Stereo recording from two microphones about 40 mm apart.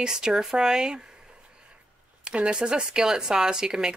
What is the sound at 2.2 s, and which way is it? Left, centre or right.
Speech, right.